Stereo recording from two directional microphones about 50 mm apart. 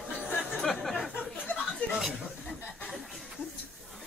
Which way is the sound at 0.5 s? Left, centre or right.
Centre.